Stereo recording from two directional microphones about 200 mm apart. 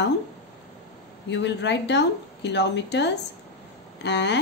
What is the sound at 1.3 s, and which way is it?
A woman's voice, 60° left (ahead or behind).